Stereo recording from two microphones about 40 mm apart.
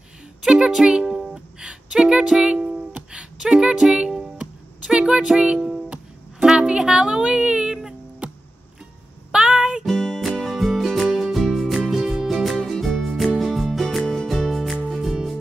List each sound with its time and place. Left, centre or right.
0.5 s music: centre
6.4 s speech: centre
9.3 s music: centre
9.8 s music: centre
10.4 s music: centre
11.1 s music: centre
11.3 s music: centre